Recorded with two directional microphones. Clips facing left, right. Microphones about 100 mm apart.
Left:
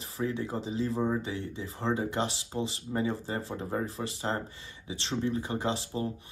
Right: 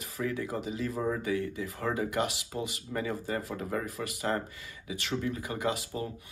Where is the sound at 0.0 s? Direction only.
30° left (ahead or behind).